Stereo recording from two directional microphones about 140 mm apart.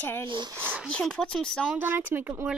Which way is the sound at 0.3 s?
30° right (ahead or behind).